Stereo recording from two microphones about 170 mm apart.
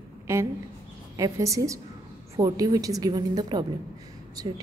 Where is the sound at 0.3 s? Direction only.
15° right (ahead or behind).